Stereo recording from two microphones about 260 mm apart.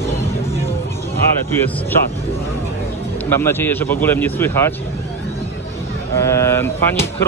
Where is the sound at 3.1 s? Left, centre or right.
Centre.